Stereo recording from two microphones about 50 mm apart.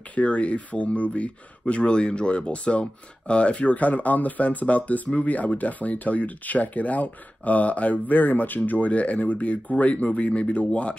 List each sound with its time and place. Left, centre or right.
0.1 s speech: left